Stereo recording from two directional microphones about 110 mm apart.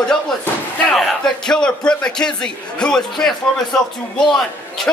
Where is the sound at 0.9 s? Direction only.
Centre (ahead or behind).